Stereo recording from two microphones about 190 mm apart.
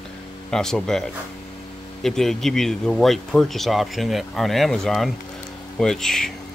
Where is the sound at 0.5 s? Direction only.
5° left (ahead or behind).